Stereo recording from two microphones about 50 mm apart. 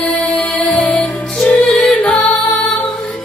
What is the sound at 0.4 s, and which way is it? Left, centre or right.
Music, left.